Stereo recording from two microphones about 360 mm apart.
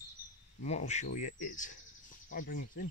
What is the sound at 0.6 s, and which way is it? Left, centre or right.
Speech, centre.